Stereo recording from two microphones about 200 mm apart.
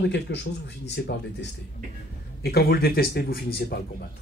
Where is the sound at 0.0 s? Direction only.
60° left (ahead or behind).